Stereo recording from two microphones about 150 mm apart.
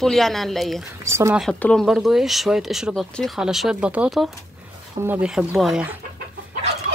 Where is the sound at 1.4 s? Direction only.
5° left (ahead or behind).